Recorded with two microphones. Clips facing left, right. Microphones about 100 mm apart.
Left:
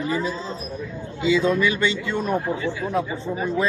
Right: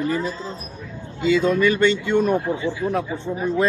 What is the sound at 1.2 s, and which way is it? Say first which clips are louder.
Speech: right 2 dB; 50° right (ahead or behind).